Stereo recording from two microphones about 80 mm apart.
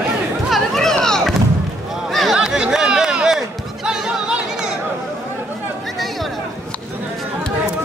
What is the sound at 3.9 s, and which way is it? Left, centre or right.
Music, centre.